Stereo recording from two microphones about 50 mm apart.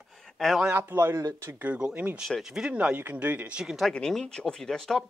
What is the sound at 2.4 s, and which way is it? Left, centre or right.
Speech, centre.